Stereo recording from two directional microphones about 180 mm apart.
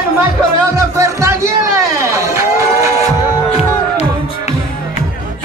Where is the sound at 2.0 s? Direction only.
15° right (ahead or behind).